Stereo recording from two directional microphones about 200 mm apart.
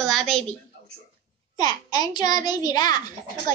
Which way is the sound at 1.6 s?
20° left (ahead or behind).